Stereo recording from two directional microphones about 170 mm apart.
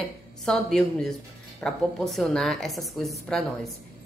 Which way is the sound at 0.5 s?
5° left (ahead or behind).